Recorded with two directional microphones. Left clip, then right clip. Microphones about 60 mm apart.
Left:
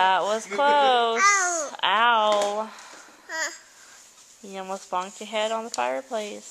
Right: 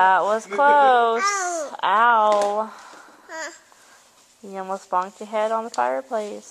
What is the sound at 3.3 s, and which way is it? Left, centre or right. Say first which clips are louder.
Babbling: left 3 dB; centre.